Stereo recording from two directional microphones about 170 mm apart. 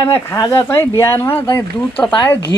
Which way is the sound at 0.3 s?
15° left (ahead or behind).